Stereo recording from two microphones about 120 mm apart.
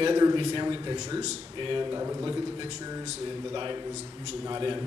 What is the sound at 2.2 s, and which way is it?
Speech, 35° right (ahead or behind).